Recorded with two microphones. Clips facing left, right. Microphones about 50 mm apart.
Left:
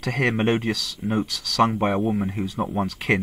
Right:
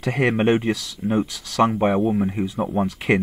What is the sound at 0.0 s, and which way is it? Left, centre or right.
Speech, centre.